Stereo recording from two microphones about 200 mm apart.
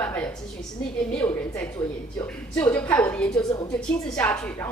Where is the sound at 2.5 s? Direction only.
15° left (ahead or behind).